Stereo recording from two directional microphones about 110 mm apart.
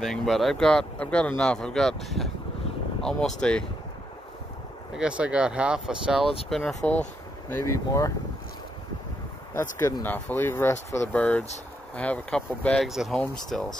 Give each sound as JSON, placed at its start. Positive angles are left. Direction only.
{"t": 0.0, "sound": "speech", "side_deg": 5}
{"t": 4.9, "sound": "speech", "side_deg": -10}
{"t": 7.4, "sound": "speech", "side_deg": 25}
{"t": 9.6, "sound": "speech", "side_deg": 20}
{"t": 11.1, "sound": "speech", "side_deg": 15}